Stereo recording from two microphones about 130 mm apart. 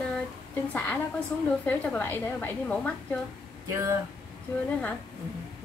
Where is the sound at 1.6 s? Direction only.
15° left (ahead or behind).